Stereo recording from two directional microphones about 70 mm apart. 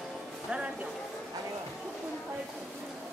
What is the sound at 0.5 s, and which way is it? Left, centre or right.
Music, centre.